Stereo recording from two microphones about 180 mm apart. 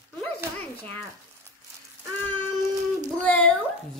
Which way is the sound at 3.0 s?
10° left (ahead or behind).